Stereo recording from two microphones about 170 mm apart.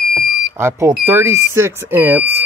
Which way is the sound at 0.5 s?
15° right (ahead or behind).